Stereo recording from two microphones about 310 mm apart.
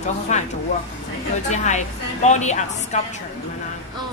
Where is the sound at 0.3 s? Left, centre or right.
Left.